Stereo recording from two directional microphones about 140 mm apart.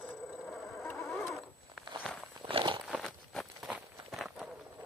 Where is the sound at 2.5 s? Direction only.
35° right (ahead or behind).